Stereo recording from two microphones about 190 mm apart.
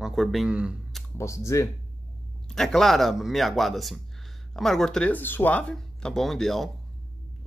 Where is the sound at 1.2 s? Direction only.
15° left (ahead or behind).